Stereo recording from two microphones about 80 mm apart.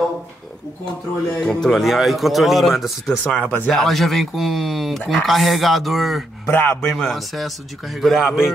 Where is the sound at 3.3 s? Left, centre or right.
Centre.